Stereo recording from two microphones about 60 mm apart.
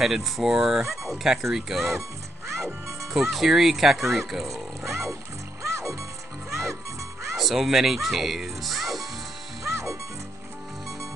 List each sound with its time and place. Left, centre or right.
0.0 s speech: centre
3.1 s speech: centre
4.8 s music: right
7.3 s speech: centre
9.7 s music: right